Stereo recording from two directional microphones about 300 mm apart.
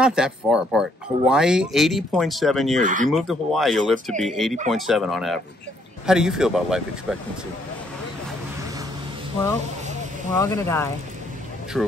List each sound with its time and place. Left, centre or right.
0.0 s speech: centre
2.8 s speech: right
3.1 s speech: centre
10.3 s speech: centre